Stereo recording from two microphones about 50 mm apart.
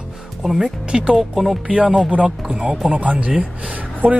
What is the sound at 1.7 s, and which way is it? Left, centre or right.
Speech, centre.